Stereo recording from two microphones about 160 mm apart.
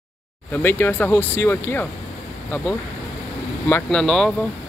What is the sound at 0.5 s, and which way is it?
Speech, 15° left (ahead or behind).